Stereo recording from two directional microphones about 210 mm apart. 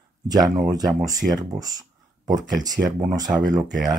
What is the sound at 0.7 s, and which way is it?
Speech, 15° right (ahead or behind).